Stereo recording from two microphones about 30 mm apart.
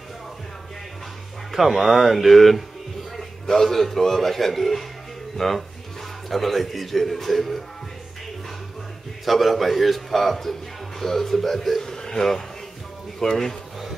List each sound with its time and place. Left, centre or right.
1.5 s a man's voice: centre
9.2 s a man's voice: centre
11.8 s a man's voice: centre